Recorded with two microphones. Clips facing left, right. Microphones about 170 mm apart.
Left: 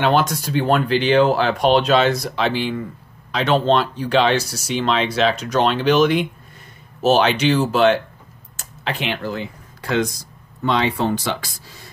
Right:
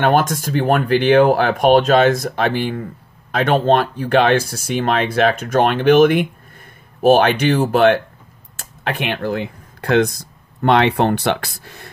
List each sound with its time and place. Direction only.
0.0 s speech: 50° right (ahead or behind)